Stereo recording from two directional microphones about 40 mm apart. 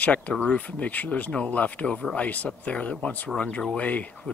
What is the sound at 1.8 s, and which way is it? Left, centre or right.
Speech, left.